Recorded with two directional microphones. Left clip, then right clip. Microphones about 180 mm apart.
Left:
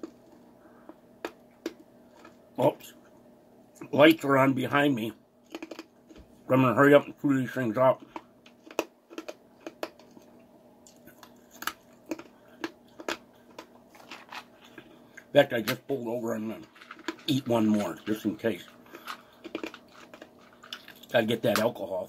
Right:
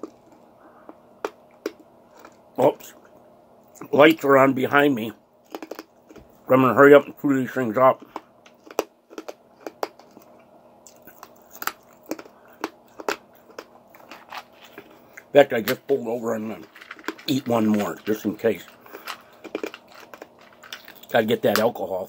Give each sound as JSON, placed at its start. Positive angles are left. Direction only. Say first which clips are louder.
{"t": 2.5, "sound": "speech", "louder": "right 6 dB", "side_deg": -15}
{"t": 8.6, "sound": "a sound", "louder": "right 5 dB", "side_deg": -10}
{"t": 11.1, "sound": "a sound", "louder": "right 7 dB", "side_deg": -10}
{"t": 14.8, "sound": "speech", "louder": "right 5 dB", "side_deg": -15}
{"t": 19.4, "sound": "biting", "louder": "right 7 dB", "side_deg": -15}
{"t": 20.7, "sound": "speech", "louder": "right 5 dB", "side_deg": -15}